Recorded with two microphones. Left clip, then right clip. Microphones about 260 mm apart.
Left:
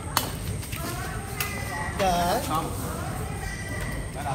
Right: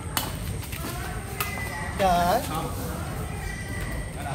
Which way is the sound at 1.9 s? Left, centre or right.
Right.